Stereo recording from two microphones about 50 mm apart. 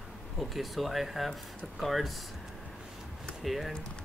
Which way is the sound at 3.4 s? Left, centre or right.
Centre.